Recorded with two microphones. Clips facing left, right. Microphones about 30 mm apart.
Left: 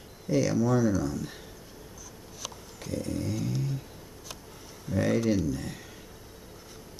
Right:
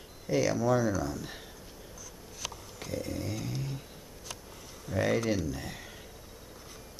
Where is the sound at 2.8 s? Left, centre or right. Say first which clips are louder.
Left 3 dB; centre.